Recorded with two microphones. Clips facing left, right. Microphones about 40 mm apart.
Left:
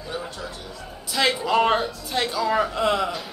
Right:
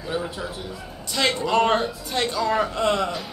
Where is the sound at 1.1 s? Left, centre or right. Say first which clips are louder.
Even; centre.